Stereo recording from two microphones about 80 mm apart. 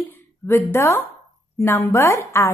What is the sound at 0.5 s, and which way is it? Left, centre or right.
A woman's voice, left.